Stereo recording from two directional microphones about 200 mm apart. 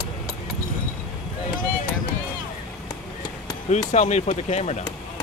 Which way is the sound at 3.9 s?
35° left (ahead or behind).